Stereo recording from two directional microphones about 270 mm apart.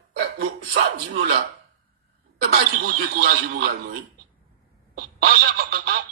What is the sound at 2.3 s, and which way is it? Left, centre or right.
A man's voice, right.